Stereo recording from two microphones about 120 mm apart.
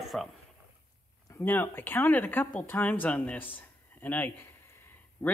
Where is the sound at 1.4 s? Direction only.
15° left (ahead or behind).